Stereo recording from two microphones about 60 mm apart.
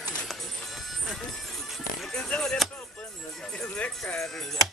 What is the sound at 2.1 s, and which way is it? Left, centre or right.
Speech, centre.